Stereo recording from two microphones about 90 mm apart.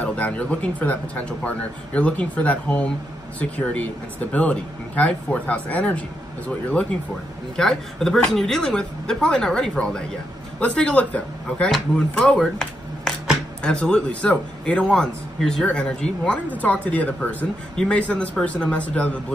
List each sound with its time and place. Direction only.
0.0 s speech: 15° left (ahead or behind)
7.5 s a man's voice: 5° left (ahead or behind)